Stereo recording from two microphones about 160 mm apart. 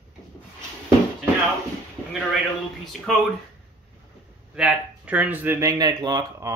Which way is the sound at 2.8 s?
Centre (ahead or behind).